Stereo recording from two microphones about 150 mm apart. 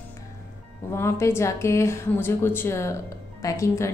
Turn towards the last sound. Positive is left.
turn(degrees=20)  # may be behind; listen again after turning